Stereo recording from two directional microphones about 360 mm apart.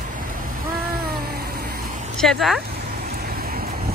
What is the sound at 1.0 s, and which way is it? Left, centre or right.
Cat, right.